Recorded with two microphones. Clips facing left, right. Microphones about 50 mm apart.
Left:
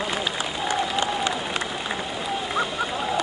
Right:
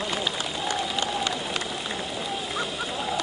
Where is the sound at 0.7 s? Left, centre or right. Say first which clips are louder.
Left 4 dB; centre.